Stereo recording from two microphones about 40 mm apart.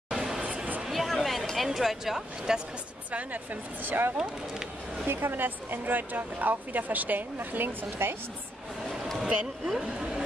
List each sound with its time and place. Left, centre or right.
0.8 s a sound: centre
1.7 s speech: centre
3.8 s speech: right
4.2 s speech: centre
5.0 s speech: right
9.2 s speech: centre